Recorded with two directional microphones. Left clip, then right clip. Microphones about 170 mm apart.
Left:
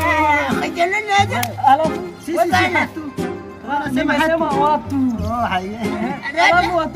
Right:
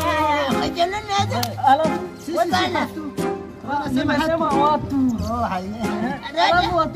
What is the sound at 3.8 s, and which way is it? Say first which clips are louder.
Speech: left 4 dB; 10° right (ahead or behind).